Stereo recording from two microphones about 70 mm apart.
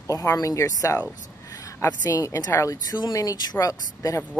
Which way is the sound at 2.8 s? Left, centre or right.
Left.